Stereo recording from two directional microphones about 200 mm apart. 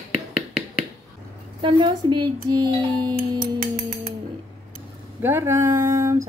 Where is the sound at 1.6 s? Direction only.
25° right (ahead or behind).